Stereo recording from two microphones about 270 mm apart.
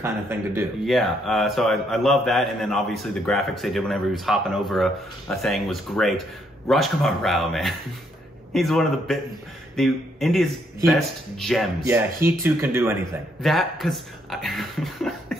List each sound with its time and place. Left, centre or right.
0.0 s a man's voice: centre